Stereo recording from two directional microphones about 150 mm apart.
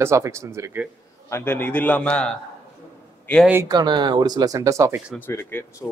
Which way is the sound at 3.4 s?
15° right (ahead or behind).